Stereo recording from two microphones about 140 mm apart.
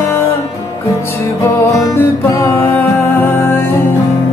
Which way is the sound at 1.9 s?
20° left (ahead or behind).